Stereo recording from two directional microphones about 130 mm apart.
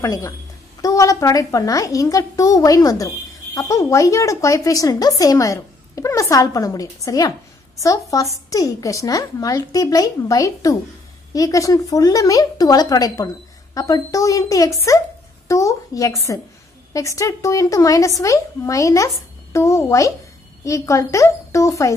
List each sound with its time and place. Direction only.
0.0 s speech: 20° left (ahead or behind)